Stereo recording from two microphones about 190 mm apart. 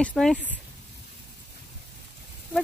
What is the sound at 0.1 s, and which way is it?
Speech, 5° left (ahead or behind).